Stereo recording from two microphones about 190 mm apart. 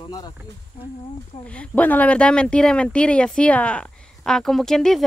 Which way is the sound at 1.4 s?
5° left (ahead or behind).